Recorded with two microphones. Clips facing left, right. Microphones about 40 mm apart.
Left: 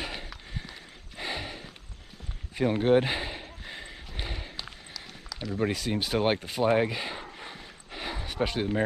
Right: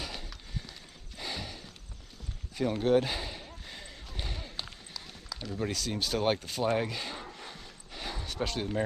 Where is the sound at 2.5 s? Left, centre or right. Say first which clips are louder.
Left 3 dB; left.